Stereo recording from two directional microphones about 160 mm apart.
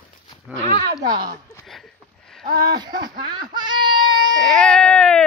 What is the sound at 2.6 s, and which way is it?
Speech, 25° right (ahead or behind).